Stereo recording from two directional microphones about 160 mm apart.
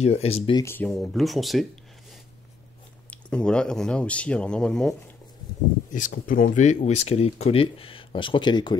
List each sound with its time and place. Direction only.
0.0 s speech: 40° left (ahead or behind)
0.6 s speech: 15° left (ahead or behind)
0.8 s speech: centre (ahead or behind)
3.1 s speech: 5° left (ahead or behind)
5.9 s speech: 55° left (ahead or behind); by 8.7 s 30° left (ahead or behind)